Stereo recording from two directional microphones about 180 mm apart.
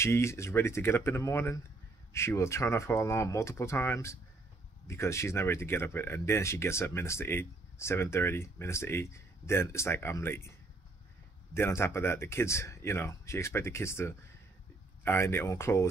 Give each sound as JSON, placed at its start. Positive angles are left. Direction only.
{"t": 0.0, "sound": "speech", "side_deg": 15}
{"t": 11.5, "sound": "speech", "side_deg": 15}